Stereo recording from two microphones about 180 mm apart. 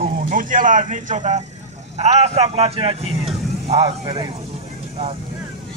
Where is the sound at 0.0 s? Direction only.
50° right (ahead or behind); by 4.4 s 30° right (ahead or behind).